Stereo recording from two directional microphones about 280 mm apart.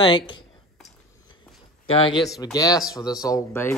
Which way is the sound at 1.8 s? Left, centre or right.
Centre.